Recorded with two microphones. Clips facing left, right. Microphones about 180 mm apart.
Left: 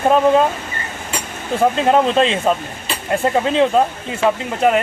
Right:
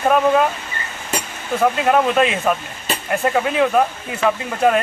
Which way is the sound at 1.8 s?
25° left (ahead or behind).